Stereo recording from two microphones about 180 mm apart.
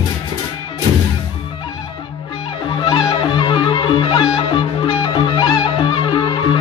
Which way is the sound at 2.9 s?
25° left (ahead or behind).